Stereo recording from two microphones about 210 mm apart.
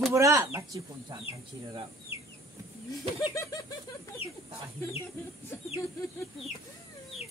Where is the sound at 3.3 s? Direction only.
15° left (ahead or behind).